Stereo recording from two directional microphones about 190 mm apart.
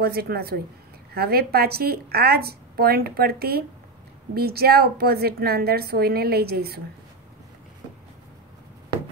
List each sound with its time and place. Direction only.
0.0 s a woman's voice: 55° right (ahead or behind)